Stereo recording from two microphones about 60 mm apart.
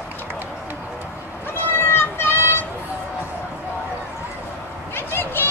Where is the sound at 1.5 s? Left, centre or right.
Left.